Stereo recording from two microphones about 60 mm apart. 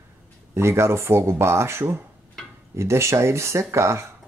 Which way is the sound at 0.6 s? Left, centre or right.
Right.